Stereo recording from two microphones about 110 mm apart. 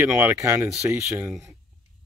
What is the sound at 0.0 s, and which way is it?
Speech, 20° right (ahead or behind).